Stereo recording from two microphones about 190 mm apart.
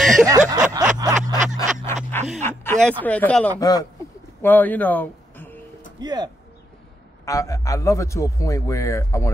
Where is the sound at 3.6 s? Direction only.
20° left (ahead or behind).